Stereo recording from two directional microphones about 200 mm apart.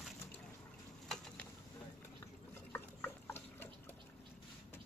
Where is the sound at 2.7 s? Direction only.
10° left (ahead or behind).